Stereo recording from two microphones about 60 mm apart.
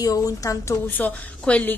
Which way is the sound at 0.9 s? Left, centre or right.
Left.